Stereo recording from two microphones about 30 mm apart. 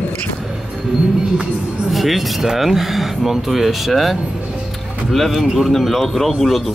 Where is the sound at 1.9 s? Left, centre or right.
Centre.